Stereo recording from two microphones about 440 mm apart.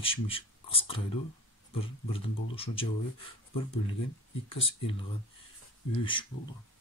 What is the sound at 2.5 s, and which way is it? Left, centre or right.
Speech, centre.